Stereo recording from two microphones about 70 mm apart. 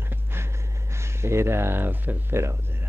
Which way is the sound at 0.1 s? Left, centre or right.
Right.